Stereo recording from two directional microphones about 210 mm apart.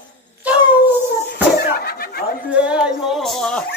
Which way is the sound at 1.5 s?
45° left (ahead or behind).